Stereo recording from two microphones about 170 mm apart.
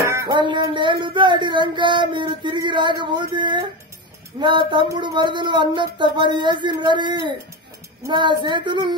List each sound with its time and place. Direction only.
0.1 s speech: 20° right (ahead or behind)